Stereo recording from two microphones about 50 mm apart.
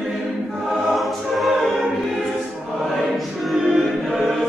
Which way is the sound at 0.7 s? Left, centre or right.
Centre.